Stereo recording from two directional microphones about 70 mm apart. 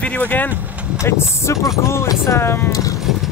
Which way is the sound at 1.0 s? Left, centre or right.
Left.